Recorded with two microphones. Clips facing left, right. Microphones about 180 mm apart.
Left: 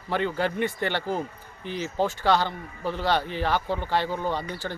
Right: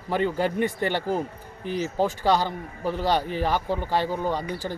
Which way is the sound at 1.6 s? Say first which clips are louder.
Right 4 dB; 40° right (ahead or behind).